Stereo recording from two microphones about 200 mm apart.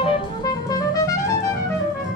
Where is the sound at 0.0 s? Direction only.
20° left (ahead or behind).